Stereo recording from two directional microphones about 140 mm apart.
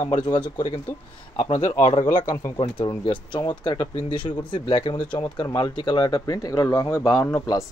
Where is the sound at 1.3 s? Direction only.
45° left (ahead or behind).